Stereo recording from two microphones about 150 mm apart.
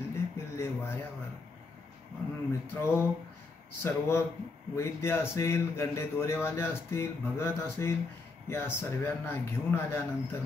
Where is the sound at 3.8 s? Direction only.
15° left (ahead or behind).